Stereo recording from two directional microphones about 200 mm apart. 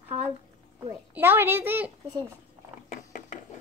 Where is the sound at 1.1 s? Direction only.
10° right (ahead or behind).